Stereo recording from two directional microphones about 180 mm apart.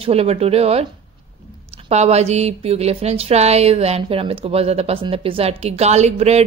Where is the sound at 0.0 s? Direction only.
35° right (ahead or behind).